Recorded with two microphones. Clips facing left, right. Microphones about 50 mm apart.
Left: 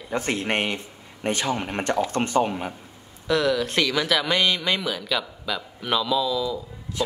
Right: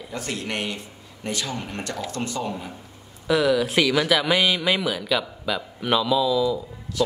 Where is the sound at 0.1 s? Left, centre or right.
Left.